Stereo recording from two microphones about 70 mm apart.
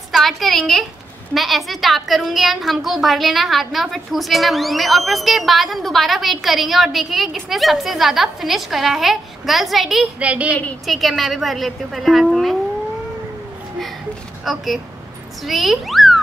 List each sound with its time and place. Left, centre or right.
0.1 s a woman's voice: centre
10.1 s a woman's voice: centre
10.9 s a woman's voice: centre
14.4 s a child's voice: centre